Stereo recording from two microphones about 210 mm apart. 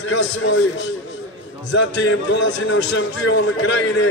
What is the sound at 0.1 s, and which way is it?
Speech, 60° left (ahead or behind).